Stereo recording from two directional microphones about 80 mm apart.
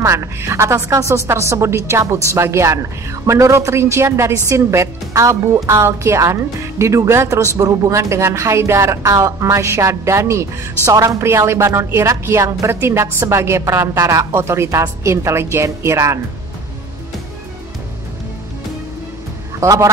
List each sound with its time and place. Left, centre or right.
0.0 s a woman's voice: right
19.6 s a woman's voice: right